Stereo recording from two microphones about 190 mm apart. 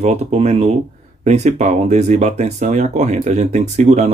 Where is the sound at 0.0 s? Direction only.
35° right (ahead or behind).